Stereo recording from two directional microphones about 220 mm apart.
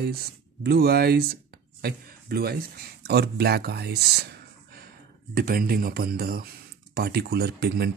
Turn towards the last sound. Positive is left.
turn(degrees=-45)  # may be behind; listen again after turning